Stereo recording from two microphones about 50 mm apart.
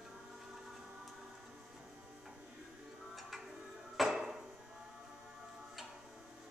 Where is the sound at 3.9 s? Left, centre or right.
Centre.